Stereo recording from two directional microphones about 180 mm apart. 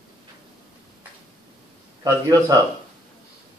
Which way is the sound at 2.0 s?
20° right (ahead or behind).